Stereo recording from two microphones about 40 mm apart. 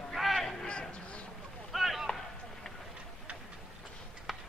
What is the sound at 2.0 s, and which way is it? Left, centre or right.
Run, centre.